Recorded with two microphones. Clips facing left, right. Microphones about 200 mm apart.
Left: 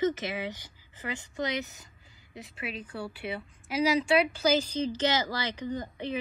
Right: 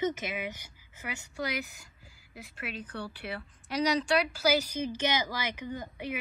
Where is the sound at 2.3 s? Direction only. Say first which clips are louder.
Left 2 dB; centre (ahead or behind).